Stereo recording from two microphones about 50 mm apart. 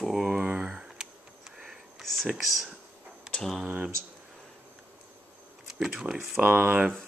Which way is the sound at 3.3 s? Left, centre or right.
Centre.